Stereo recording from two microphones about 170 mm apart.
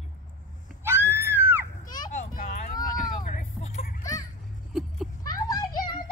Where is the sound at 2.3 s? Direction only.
55° left (ahead or behind).